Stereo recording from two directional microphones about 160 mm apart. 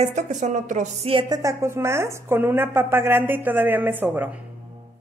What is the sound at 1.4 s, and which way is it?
A woman's voice, 20° right (ahead or behind).